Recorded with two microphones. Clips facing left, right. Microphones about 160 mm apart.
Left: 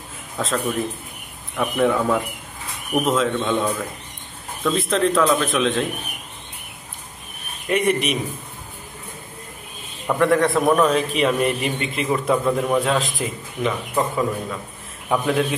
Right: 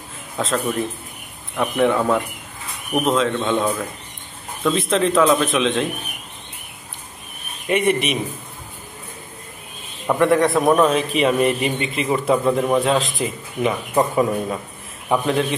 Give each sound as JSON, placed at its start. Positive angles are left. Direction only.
{"t": 0.4, "sound": "a man's voice", "side_deg": 0}
{"t": 7.6, "sound": "a man's voice", "side_deg": 0}
{"t": 10.0, "sound": "a man's voice", "side_deg": -5}
{"t": 13.9, "sound": "a man's voice", "side_deg": -20}